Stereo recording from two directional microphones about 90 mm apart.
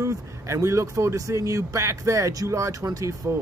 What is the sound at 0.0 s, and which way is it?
Speech, 30° right (ahead or behind).